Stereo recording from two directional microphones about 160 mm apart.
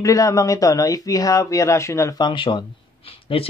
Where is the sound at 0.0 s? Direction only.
20° left (ahead or behind).